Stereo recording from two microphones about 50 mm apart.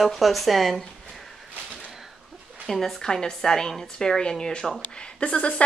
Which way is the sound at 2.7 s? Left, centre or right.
Centre.